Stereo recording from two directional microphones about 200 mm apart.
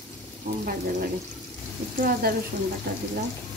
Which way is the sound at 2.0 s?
50° right (ahead or behind).